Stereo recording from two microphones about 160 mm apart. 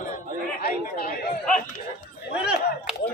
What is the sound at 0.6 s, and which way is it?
Speech, 70° left (ahead or behind).